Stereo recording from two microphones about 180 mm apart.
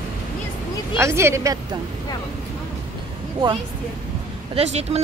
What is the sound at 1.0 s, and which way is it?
Speech, 15° right (ahead or behind).